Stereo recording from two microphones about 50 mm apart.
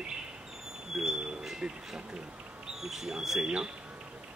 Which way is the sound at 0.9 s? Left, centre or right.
Centre.